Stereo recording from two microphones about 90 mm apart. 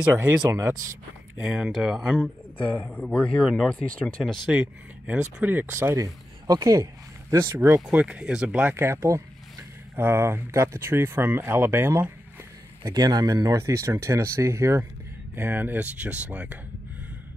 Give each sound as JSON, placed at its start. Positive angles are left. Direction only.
{"t": 0.5, "sound": "speech", "side_deg": -35}
{"t": 1.4, "sound": "speech", "side_deg": -5}
{"t": 2.9, "sound": "speech", "side_deg": 15}
{"t": 4.5, "sound": "speech", "side_deg": -15}
{"t": 6.4, "sound": "speech", "side_deg": -40}
{"t": 7.8, "sound": "speech", "side_deg": -15}
{"t": 8.7, "sound": "speech", "side_deg": -30}
{"t": 12.8, "sound": "speech", "side_deg": -45}